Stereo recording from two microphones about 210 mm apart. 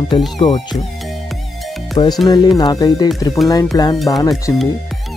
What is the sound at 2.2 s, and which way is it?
Speech, 15° left (ahead or behind).